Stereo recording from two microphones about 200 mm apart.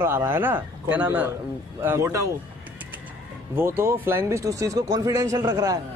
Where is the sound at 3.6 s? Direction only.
10° right (ahead or behind).